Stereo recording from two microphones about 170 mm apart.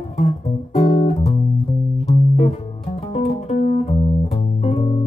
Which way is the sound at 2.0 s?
40° left (ahead or behind).